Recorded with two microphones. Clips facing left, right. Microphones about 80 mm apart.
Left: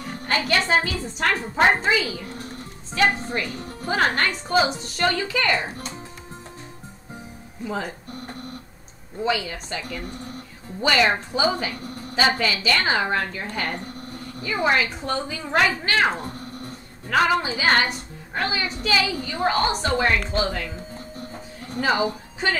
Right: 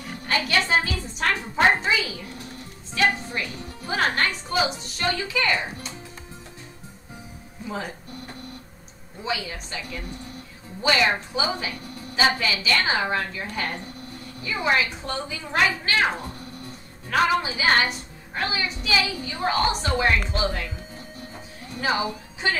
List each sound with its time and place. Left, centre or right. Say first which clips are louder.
0.0 s a woman's voice: left 1 dB; left
7.7 s music: left 2 dB; left
9.2 s a woman's voice: left 5 dB; left
21.6 s a woman's voice: left 3 dB; left